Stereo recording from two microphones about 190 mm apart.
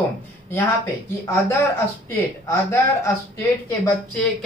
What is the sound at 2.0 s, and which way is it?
Speech, 15° left (ahead or behind).